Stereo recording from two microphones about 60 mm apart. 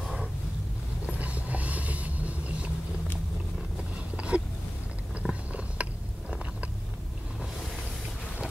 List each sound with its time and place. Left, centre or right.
1.2 s vehicle: right
3.9 s a sound: centre
5.2 s biting: right